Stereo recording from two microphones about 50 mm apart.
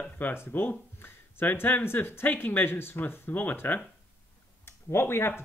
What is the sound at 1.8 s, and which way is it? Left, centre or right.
Speech, left.